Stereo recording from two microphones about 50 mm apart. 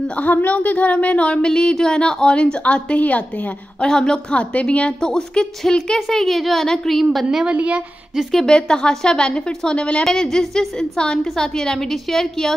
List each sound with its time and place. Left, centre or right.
0.1 s speech: left
3.8 s a woman's voice: centre
5.9 s a woman's voice: centre
7.4 s a woman's voice: right
8.5 s a woman's voice: centre
9.8 s speech: left
10.0 s a woman's voice: centre